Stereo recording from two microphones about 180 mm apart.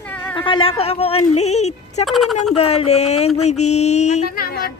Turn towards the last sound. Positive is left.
turn(degrees=55)  # may be behind; listen again after turning